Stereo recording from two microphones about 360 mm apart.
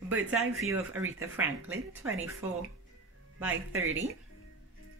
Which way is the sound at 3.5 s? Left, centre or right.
Right.